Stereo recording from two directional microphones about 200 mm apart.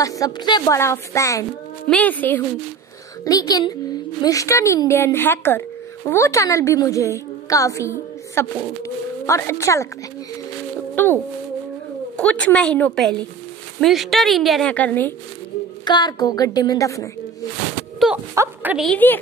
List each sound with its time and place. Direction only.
0.0 s a woman's voice: 15° left (ahead or behind)
11.0 s a woman's voice: 10° left (ahead or behind)
12.2 s a woman's voice: 5° left (ahead or behind)
15.8 s a child's voice: 20° left (ahead or behind)
17.9 s a sound: centre (ahead or behind)
18.3 s a woman's voice: 10° right (ahead or behind)
18.9 s a woman's voice: 10° left (ahead or behind)